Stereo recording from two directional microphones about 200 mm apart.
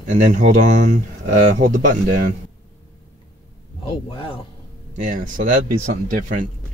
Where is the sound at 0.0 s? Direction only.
40° right (ahead or behind).